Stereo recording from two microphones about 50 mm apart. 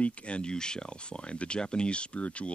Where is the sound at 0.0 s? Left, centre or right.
Left.